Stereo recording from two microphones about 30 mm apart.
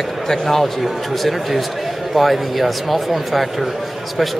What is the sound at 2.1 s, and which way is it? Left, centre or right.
Speech, centre.